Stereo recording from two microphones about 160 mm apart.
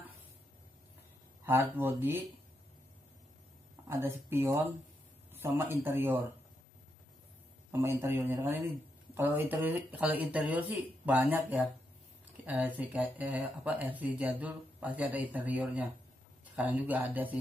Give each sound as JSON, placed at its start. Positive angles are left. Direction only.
{"t": 1.4, "sound": "speech", "side_deg": -15}
{"t": 3.9, "sound": "speech", "side_deg": -15}
{"t": 7.7, "sound": "speech", "side_deg": -15}